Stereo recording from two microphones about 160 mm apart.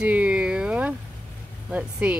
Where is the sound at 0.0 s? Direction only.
10° right (ahead or behind).